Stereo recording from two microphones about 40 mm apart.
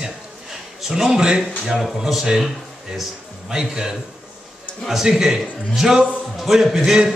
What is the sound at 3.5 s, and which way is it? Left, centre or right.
A man's voice, centre.